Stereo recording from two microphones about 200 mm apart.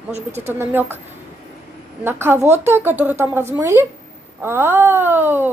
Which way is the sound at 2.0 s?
10° right (ahead or behind).